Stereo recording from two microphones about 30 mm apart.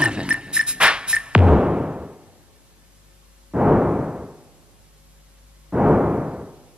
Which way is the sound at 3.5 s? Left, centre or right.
Right.